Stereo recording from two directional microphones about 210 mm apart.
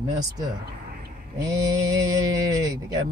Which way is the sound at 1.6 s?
15° right (ahead or behind).